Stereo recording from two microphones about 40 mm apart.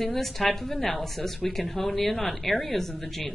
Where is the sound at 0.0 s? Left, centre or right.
Centre.